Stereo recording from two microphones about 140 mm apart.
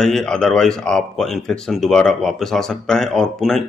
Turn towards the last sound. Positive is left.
turn(degrees=0)  # may be behind; listen again after turning